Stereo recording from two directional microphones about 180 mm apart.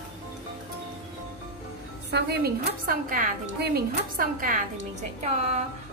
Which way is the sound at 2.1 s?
65° right (ahead or behind).